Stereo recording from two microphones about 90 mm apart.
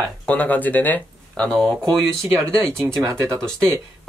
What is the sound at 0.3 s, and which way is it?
Speech, 15° left (ahead or behind).